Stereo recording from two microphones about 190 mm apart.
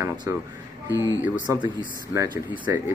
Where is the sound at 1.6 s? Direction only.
20° right (ahead or behind).